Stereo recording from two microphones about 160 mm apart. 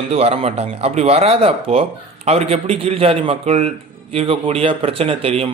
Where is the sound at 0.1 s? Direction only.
40° right (ahead or behind).